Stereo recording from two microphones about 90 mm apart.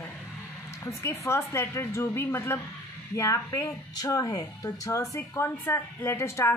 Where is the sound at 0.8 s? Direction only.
30° left (ahead or behind).